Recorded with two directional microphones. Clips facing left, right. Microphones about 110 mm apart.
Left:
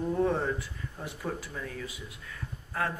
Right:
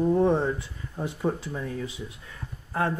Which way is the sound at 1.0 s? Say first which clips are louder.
Right 8 dB; 25° right (ahead or behind).